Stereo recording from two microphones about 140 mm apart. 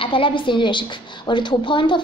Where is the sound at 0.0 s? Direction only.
40° left (ahead or behind).